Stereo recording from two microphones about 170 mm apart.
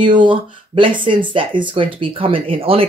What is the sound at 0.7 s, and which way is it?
Speech, 30° right (ahead or behind).